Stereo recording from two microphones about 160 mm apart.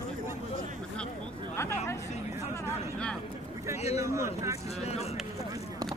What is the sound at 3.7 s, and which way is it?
Speech, 40° left (ahead or behind).